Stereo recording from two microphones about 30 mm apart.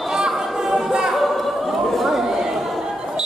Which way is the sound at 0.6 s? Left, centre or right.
Centre.